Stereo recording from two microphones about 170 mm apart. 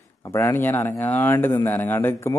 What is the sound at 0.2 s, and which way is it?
Speech, 15° left (ahead or behind).